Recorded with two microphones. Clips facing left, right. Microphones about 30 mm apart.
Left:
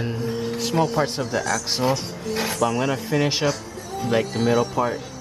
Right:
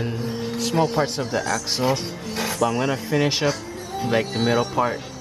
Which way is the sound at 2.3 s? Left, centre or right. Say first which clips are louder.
Even; centre.